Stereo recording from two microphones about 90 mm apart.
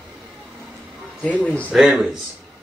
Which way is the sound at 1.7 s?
5° right (ahead or behind).